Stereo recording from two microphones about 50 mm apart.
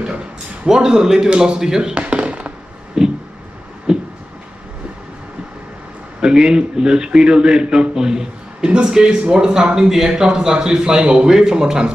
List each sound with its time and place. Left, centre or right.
0.7 s a man's voice: centre
2.0 s fireworks: right
3.0 s a sound: centre
6.2 s a man's voice: centre